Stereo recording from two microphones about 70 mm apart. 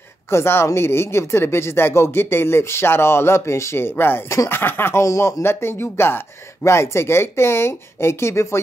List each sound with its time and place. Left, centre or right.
0.3 s speech: left
5.0 s speech: left